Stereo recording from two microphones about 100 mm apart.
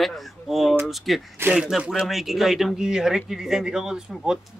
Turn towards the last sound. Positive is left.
turn(degrees=-5)  # may be behind; listen again after turning